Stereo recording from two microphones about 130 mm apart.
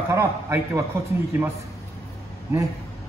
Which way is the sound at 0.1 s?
20° right (ahead or behind).